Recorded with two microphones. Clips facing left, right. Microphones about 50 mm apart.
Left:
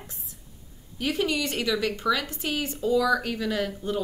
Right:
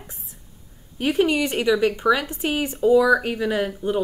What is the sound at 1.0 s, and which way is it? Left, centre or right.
A woman's voice, right.